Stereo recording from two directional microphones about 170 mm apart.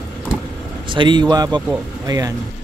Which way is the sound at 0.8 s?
30° right (ahead or behind).